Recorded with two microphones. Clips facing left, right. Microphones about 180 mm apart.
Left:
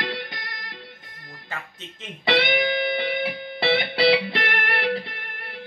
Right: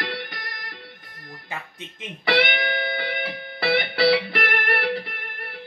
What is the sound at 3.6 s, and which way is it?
Music, 25° left (ahead or behind).